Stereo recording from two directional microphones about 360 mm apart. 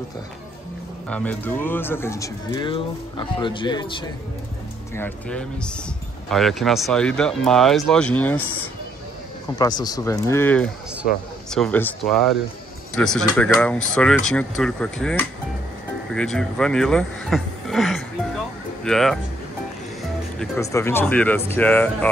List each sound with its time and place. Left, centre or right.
1.0 s speech: centre
4.9 s speech: centre
9.6 s speech: centre
20.3 s speech: centre